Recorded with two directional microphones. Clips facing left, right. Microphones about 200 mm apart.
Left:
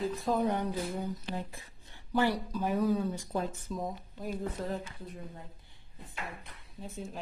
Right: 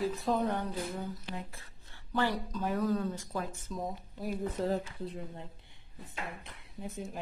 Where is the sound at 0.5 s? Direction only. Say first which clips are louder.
Left 2 dB; 15° left (ahead or behind).